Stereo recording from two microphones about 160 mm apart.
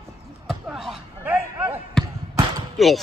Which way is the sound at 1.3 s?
15° right (ahead or behind).